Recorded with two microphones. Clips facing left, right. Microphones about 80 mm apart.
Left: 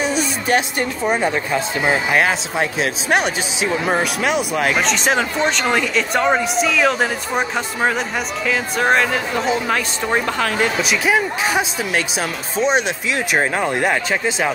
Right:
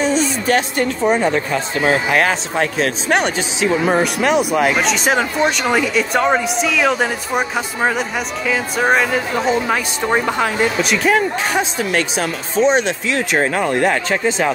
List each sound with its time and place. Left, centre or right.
0.0 s a sound: centre
1.0 s speech: centre
10.0 s speech: centre
10.8 s speech: centre